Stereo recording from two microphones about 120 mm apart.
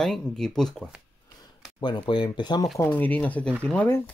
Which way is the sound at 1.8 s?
40° left (ahead or behind).